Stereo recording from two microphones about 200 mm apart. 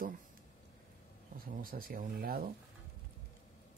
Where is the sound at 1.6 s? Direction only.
45° right (ahead or behind).